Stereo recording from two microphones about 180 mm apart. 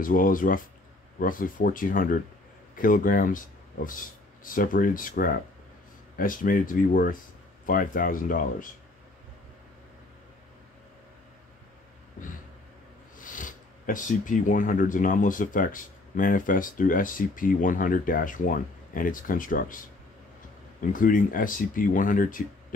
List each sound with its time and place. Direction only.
0.0 s speech: 50° left (ahead or behind)
13.2 s speech: 45° left (ahead or behind)
20.9 s speech: 50° left (ahead or behind)